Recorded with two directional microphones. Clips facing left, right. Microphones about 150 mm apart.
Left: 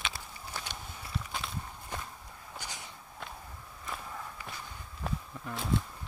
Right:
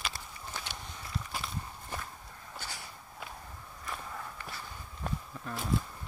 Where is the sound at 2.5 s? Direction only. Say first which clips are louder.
Even; 15° left (ahead or behind).